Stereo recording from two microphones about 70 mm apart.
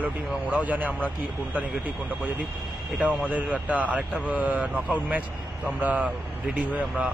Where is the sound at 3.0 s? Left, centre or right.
Right.